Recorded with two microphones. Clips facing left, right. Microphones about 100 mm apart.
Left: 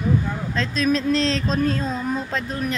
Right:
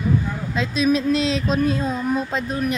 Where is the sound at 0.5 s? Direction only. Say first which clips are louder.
Right 2 dB; 10° right (ahead or behind).